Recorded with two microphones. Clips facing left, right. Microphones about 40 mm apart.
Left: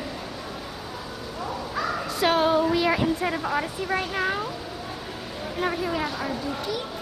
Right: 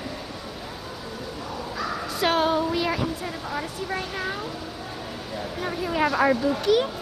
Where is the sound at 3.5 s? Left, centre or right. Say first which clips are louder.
Left 3 dB; centre.